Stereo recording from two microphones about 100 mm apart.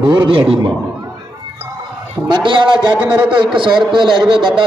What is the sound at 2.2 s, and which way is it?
A man's voice, 50° right (ahead or behind).